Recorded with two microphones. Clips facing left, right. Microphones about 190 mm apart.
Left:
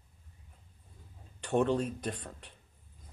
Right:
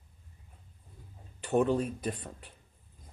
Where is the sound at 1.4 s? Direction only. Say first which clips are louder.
Right 1 dB; 5° right (ahead or behind).